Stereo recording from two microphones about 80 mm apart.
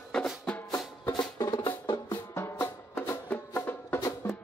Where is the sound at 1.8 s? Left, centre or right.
Left.